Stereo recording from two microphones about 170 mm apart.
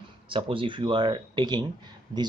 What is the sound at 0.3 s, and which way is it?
Speech, 30° right (ahead or behind).